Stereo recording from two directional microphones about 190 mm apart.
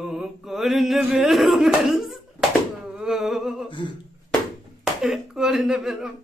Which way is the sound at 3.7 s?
25° left (ahead or behind).